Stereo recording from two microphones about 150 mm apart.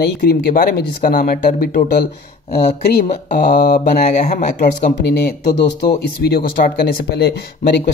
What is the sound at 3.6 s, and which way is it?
Speech, 90° left.